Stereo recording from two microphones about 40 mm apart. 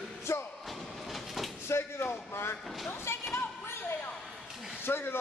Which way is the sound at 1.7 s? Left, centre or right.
Left.